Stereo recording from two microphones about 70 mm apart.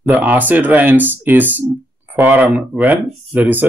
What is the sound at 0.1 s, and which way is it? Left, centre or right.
Speech, right.